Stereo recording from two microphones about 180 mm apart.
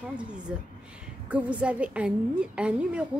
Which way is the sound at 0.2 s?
5° right (ahead or behind).